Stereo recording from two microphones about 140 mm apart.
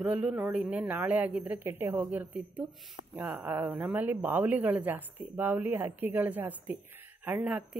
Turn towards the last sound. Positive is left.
turn(degrees=-10)  # may be behind; listen again after turning